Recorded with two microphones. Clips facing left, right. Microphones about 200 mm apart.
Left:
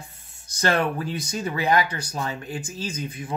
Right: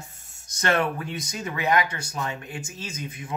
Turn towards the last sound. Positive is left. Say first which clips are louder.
# left 4 dB
turn(degrees=35)  # may be behind; listen again after turning